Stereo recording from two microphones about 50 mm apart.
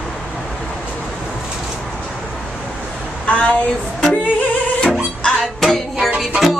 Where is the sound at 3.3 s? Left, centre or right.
Left.